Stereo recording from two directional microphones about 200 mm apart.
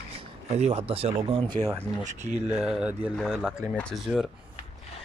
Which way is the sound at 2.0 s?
35° right (ahead or behind).